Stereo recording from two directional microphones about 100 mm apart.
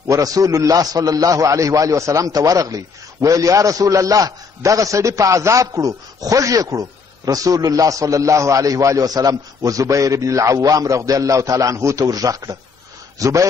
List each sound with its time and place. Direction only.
0.1 s a man's voice: 35° right (ahead or behind)